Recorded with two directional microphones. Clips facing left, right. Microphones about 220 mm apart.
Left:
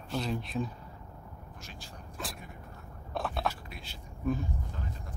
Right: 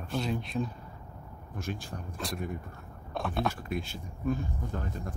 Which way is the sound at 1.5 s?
55° right (ahead or behind).